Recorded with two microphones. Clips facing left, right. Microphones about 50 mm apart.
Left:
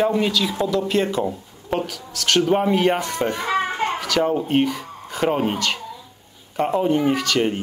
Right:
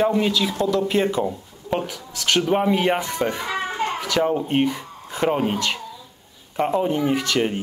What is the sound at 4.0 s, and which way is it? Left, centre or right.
Speech, centre.